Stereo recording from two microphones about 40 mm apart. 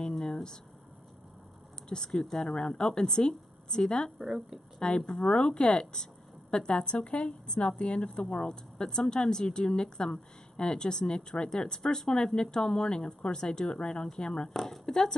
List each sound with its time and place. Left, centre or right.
0.3 s a sound: centre
2.0 s speech: centre
4.2 s speech: centre
4.7 s speech: left
14.5 s speech: centre